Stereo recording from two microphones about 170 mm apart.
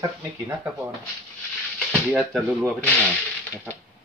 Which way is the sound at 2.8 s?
10° left (ahead or behind).